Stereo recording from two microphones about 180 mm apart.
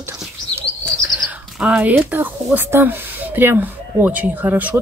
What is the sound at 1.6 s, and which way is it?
Speech, 5° right (ahead or behind).